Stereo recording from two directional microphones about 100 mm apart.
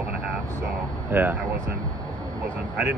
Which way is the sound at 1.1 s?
15° right (ahead or behind).